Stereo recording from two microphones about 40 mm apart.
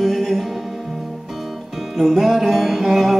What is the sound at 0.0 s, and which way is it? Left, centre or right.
Music, centre.